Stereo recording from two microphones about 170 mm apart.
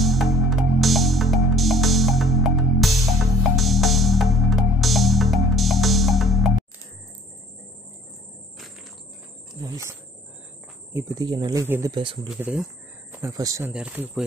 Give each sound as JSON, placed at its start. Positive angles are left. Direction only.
{"t": 0.0, "sound": "music", "side_deg": 0}
{"t": 9.6, "sound": "a sound", "side_deg": -15}
{"t": 10.9, "sound": "speech", "side_deg": -20}
{"t": 11.6, "sound": "speech", "side_deg": -15}
{"t": 11.9, "sound": "speech", "side_deg": -30}
{"t": 12.4, "sound": "speech", "side_deg": -10}
{"t": 13.1, "sound": "speech", "side_deg": -20}
{"t": 13.7, "sound": "speech", "side_deg": -10}